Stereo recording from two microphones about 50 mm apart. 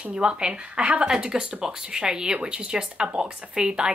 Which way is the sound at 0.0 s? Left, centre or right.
Centre.